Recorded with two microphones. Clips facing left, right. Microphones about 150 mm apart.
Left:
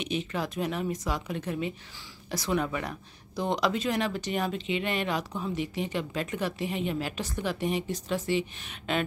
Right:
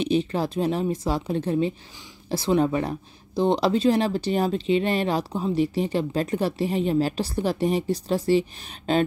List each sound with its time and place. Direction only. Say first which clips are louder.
0.0 s speech: right 8 dB; 35° right (ahead or behind)